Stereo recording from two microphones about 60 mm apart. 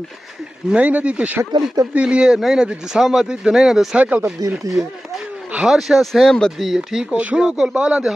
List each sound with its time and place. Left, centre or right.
0.7 s speech: right; by 3.9 s centre
3.9 s speech: right
4.4 s speech: right
4.8 s speech: centre
7.2 s speech: right
7.4 s speech: centre